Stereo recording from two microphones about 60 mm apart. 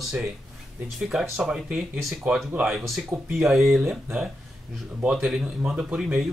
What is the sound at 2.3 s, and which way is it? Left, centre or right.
Speech, right.